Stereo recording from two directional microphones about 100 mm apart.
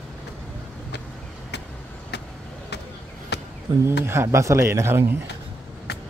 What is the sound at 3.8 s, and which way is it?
Speech, 25° right (ahead or behind).